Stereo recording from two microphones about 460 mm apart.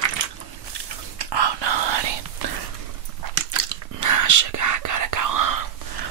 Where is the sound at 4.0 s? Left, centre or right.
Right.